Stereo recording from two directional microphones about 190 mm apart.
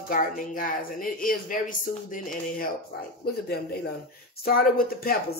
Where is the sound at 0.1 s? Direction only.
45° left (ahead or behind).